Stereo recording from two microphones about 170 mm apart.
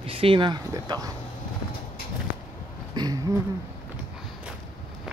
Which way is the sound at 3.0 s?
20° right (ahead or behind).